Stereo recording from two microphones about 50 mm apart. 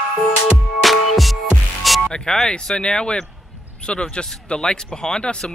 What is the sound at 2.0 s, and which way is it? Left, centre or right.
Speech, centre.